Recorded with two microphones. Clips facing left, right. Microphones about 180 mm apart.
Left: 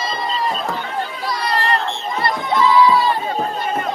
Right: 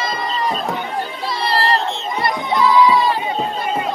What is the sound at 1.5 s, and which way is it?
Crowd, 25° right (ahead or behind).